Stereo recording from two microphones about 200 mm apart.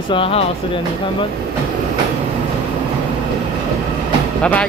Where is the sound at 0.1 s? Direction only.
30° left (ahead or behind).